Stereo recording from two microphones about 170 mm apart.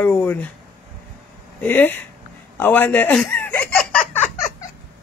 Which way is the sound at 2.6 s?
10° left (ahead or behind).